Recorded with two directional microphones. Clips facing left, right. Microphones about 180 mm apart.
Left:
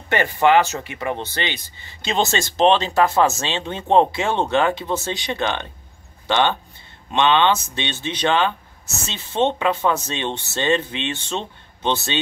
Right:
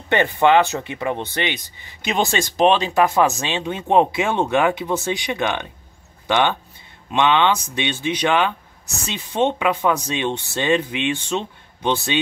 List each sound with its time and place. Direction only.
0.1 s speech: 20° right (ahead or behind)